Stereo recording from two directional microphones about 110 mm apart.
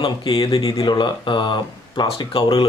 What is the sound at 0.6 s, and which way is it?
Speech, 35° left (ahead or behind).